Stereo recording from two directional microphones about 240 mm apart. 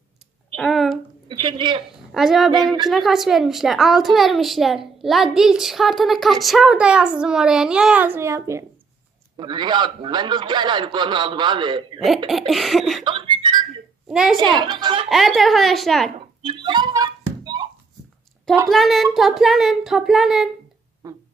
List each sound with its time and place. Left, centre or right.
0.6 s a sound: centre
1.3 s a man's voice: centre
2.1 s a woman's voice: centre
2.6 s speech: centre
2.9 s a woman's voice: centre
12.3 s a woman's voice: centre
13.0 s a sound: centre
14.0 s a woman's voice: centre
14.4 s a man's voice: centre
15.0 s a woman's voice: centre
16.4 s a sound: centre
18.7 s a woman's voice: centre
21.0 s a sound: centre